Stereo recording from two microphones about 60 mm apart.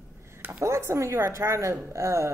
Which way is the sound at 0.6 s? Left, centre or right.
Right.